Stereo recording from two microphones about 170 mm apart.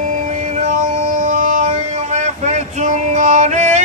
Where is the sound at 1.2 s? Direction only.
45° right (ahead or behind).